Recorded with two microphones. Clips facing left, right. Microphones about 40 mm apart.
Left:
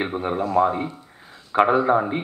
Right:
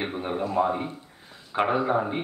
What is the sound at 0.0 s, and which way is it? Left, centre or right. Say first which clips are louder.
Speech: left 5 dB; centre.